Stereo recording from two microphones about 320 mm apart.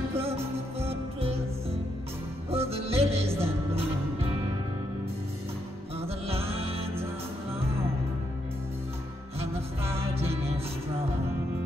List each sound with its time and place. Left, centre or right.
0.1 s music: centre
5.9 s music: centre
10.1 s music: centre